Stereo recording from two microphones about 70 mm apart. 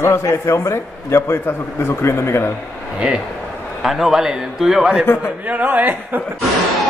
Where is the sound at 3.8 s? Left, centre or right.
Centre.